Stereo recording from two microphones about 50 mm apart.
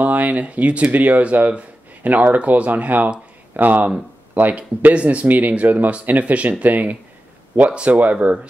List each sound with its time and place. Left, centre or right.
0.0 s speech: right